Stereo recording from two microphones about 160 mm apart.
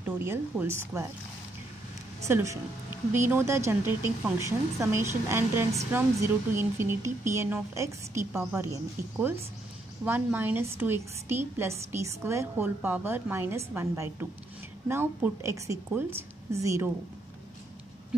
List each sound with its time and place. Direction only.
0.0 s a woman's voice: 15° right (ahead or behind)
2.2 s a woman's voice: 20° right (ahead or behind)